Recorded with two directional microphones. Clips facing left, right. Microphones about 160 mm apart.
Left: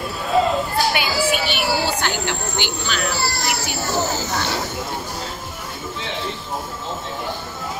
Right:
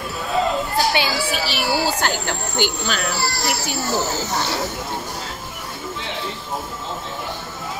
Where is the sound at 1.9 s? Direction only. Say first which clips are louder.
Right 1 dB; 40° right (ahead or behind).